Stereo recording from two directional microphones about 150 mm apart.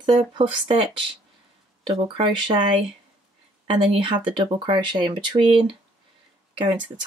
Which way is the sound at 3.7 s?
35° right (ahead or behind).